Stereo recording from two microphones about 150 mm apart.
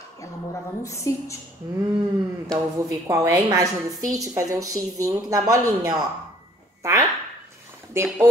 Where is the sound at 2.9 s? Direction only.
20° right (ahead or behind).